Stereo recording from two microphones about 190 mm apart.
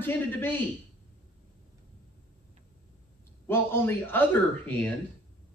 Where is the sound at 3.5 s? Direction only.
10° left (ahead or behind).